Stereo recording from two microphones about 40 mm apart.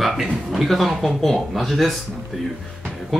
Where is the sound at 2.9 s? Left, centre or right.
Centre.